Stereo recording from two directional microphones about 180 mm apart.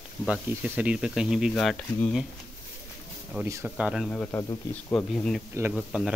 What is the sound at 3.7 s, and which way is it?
Speech, 5° right (ahead or behind).